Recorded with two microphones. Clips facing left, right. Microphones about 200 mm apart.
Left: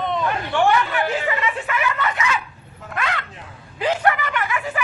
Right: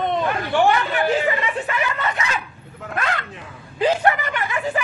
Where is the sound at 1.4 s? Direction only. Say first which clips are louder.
Even; 35° right (ahead or behind).